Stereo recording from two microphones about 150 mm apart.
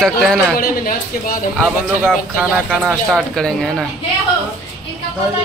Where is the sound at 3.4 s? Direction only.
5° left (ahead or behind).